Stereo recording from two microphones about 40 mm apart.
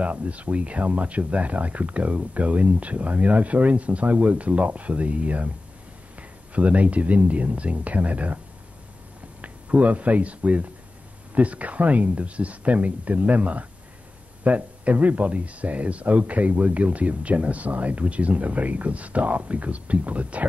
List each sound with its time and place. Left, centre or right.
0.0 s speech: right
6.5 s speech: right
9.4 s speech: right